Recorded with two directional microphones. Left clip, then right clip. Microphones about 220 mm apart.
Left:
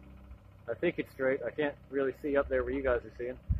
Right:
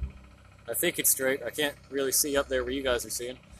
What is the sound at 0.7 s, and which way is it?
Speech, 15° right (ahead or behind).